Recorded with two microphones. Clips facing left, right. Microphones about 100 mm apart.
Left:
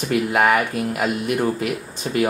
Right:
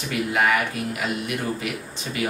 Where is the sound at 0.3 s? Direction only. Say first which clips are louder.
Left 2 dB; 45° left (ahead or behind).